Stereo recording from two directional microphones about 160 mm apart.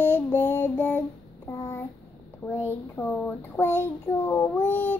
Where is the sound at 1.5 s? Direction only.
20° left (ahead or behind).